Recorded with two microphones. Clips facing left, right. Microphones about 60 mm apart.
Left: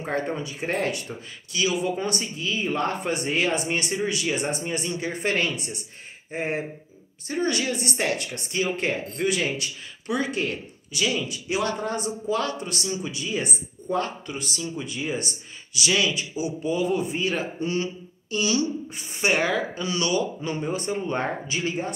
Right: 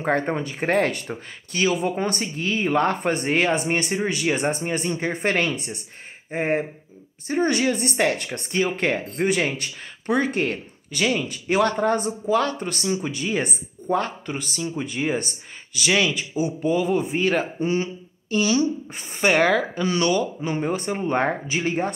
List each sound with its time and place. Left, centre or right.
0.0 s speech: right
12.0 s speech: right
19.2 s speech: right